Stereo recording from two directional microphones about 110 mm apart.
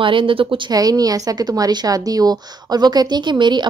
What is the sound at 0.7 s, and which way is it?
A woman's voice, 35° right (ahead or behind).